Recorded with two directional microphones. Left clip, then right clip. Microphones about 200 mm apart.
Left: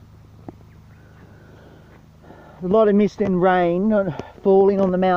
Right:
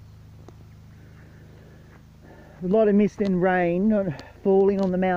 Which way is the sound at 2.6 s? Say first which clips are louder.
Left 4 dB; 10° left (ahead or behind).